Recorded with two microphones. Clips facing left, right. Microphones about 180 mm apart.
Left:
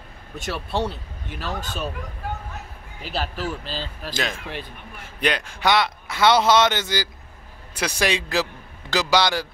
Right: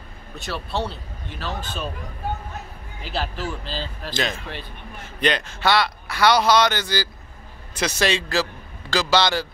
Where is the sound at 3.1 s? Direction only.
10° left (ahead or behind).